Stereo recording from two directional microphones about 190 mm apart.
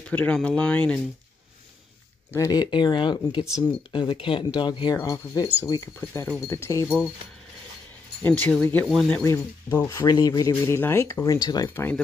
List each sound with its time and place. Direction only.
0.1 s speech: 5° left (ahead or behind)
2.3 s speech: 20° left (ahead or behind)
8.2 s speech: 10° left (ahead or behind)
9.2 s speech: 15° left (ahead or behind)